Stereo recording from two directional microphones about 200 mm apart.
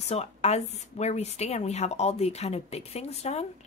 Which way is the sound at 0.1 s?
35° left (ahead or behind).